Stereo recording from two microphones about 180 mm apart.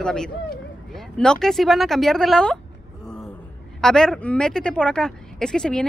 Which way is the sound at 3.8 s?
5° left (ahead or behind).